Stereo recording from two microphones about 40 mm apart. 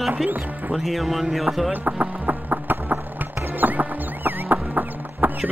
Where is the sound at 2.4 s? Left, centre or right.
Right.